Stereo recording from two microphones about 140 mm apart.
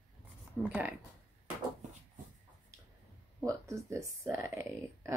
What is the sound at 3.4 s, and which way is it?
Speech, 20° right (ahead or behind).